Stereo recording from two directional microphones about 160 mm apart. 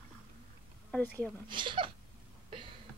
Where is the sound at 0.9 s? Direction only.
10° left (ahead or behind).